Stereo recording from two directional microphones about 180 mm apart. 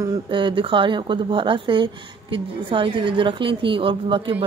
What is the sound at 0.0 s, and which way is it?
A woman's voice, 25° right (ahead or behind).